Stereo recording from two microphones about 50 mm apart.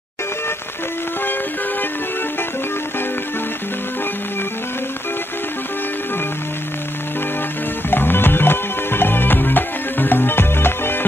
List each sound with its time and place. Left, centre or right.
7.9 s music: left